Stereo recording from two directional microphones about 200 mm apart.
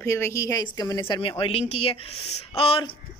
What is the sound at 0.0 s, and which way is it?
Speech, 15° left (ahead or behind).